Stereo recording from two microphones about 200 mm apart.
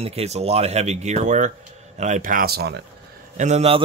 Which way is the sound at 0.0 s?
30° right (ahead or behind).